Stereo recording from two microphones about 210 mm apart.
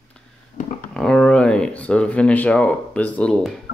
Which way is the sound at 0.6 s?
40° left (ahead or behind).